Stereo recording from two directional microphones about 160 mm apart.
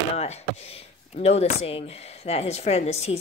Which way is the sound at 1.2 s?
40° left (ahead or behind).